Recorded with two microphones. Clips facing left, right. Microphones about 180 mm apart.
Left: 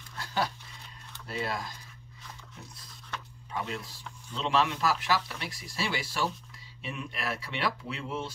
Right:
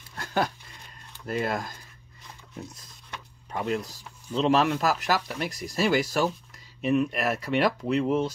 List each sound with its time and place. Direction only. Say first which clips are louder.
0.2 s a sound: right 4 dB; 50° right (ahead or behind)
1.2 s speech: right 6 dB; 50° right (ahead or behind)
3.5 s speech: right 7 dB; 50° right (ahead or behind)
6.8 s speech: right 13 dB; 55° right (ahead or behind)